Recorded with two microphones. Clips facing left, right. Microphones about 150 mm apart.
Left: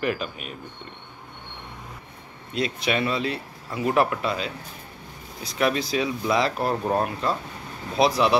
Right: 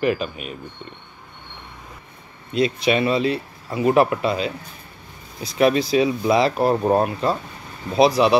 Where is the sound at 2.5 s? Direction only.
25° right (ahead or behind).